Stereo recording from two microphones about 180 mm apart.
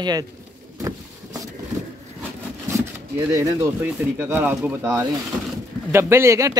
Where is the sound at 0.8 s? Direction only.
20° right (ahead or behind).